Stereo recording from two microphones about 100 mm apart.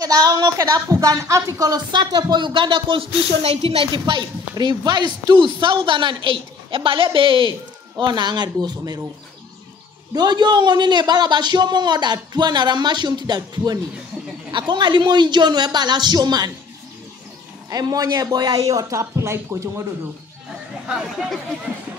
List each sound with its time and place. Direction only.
0.0 s speech: 40° right (ahead or behind)
1.9 s a man's voice: 45° right (ahead or behind)
10.1 s a man's voice: 45° right (ahead or behind)
17.6 s speech: 40° right (ahead or behind)
20.8 s speech: 5° right (ahead or behind)